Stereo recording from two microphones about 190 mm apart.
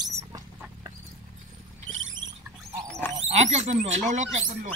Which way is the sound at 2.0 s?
90° right.